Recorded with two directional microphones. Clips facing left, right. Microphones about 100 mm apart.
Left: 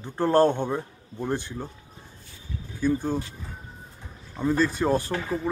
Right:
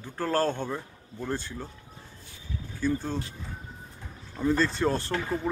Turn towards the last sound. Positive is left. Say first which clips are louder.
# left 2 dB
turn(degrees=5)  # may be behind; listen again after turning